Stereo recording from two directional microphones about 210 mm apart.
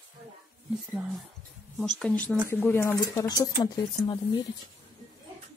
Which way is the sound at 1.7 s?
Centre (ahead or behind).